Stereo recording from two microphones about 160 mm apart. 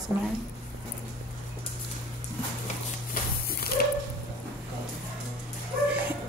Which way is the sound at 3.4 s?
70° left (ahead or behind).